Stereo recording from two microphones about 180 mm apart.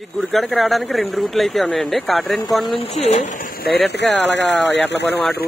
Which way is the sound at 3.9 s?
75° left (ahead or behind).